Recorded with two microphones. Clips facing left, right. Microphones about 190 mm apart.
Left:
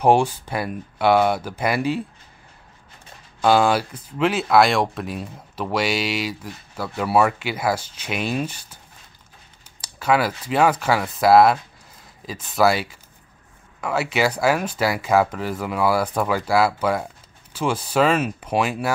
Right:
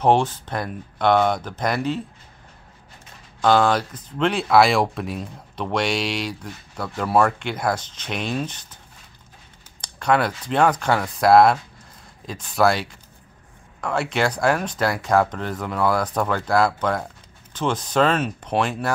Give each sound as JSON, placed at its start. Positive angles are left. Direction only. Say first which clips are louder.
{"t": 0.0, "sound": "speech", "louder": "left 1 dB", "side_deg": 10}
{"t": 3.3, "sound": "speech", "louder": "even", "side_deg": 10}
{"t": 9.8, "sound": "speech", "louder": "even", "side_deg": 5}